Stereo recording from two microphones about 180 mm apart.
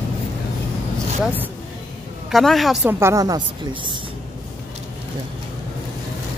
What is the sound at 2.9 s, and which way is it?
A woman's voice, 15° right (ahead or behind).